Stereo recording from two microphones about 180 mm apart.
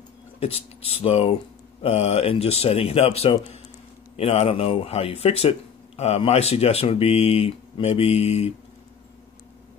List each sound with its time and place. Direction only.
0.4 s speech: 35° left (ahead or behind)